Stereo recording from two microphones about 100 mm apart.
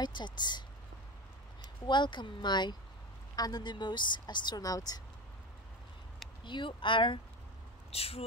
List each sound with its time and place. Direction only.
0.0 s speech: 50° left (ahead or behind)
1.9 s speech: 50° left (ahead or behind)
6.4 s speech: 55° left (ahead or behind)
7.9 s speech: 75° left (ahead or behind)